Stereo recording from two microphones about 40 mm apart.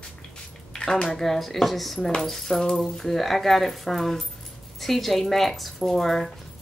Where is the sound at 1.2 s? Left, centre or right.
Centre.